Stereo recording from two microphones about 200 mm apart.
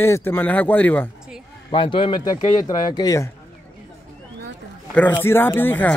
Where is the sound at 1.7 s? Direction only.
25° left (ahead or behind).